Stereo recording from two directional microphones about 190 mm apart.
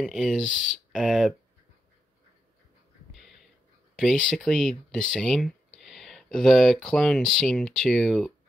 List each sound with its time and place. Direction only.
0.0 s speech: centre (ahead or behind)
3.1 s a sound: centre (ahead or behind)
4.0 s speech: centre (ahead or behind)